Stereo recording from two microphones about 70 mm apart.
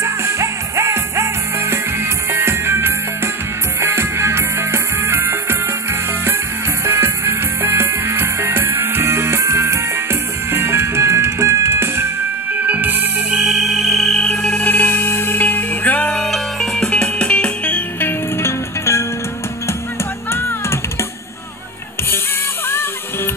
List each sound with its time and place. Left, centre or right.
0.0 s music: right
6.8 s music: right
12.5 s music: right
13.4 s music: centre
14.6 s music: left
16.1 s music: centre
16.9 s music: centre
18.0 s music: left